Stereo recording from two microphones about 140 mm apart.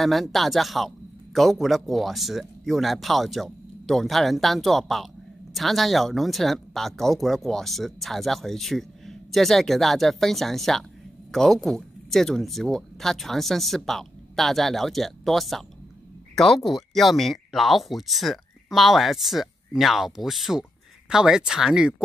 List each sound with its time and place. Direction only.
0.0 s a man's voice: centre (ahead or behind)